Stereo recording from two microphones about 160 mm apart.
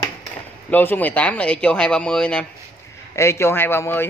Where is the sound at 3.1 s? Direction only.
15° left (ahead or behind).